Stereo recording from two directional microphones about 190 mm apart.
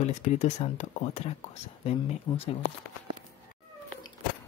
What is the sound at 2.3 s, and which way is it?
Speech, 20° left (ahead or behind).